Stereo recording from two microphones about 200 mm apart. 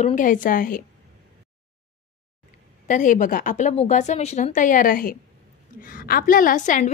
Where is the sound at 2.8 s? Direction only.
40° left (ahead or behind).